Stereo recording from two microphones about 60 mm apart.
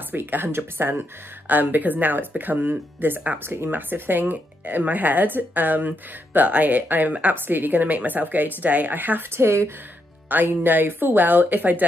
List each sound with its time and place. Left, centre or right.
0.1 s speech: right
9.3 s speech: right
10.3 s speech: right